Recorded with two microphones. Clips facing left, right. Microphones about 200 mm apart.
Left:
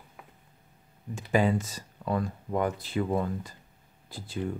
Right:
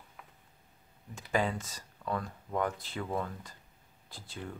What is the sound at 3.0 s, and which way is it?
Speech, 15° left (ahead or behind).